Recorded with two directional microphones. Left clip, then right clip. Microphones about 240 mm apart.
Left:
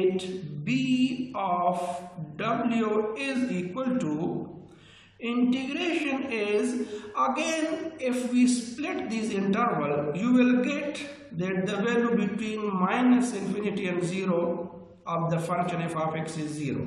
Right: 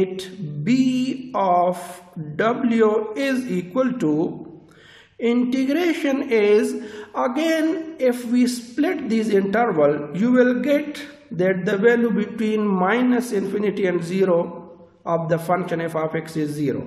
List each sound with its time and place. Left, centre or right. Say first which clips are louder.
0.7 s mantra: right 6 dB; right
2.3 s a man's voice: right 8 dB; right
5.2 s a man's voice: right 8 dB; right